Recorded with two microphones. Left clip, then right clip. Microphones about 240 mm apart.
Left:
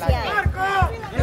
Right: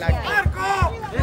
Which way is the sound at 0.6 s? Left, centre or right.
Right.